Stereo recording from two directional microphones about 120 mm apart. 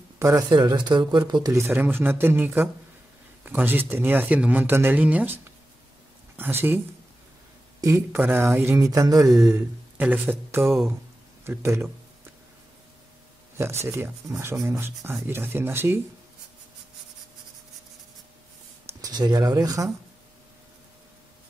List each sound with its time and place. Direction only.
0.2 s speech: 25° right (ahead or behind)
0.5 s speech: 40° right (ahead or behind)
1.5 s speech: 20° right (ahead or behind)
7.8 s speech: 20° right (ahead or behind)
10.6 s speech: centre (ahead or behind)
11.4 s speech: 20° right (ahead or behind)
13.6 s speech: 20° right (ahead or behind)
18.9 s speech: 35° right (ahead or behind)